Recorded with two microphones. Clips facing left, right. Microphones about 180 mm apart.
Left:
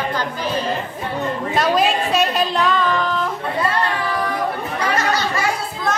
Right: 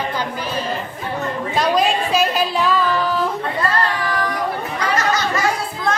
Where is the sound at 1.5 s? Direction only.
Centre (ahead or behind).